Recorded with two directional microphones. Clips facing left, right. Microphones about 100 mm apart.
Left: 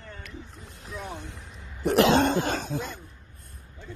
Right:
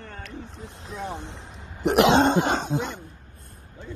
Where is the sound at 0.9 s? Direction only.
25° right (ahead or behind).